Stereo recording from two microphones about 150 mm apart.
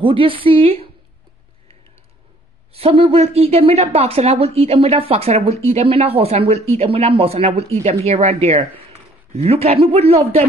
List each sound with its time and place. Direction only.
0.0 s a woman's voice: 35° right (ahead or behind)
2.7 s speech: 40° right (ahead or behind)